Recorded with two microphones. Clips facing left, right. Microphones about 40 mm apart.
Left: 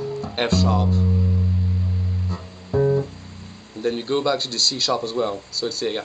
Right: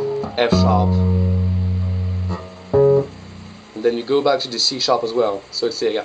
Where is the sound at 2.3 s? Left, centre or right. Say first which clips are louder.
Right 7 dB; centre.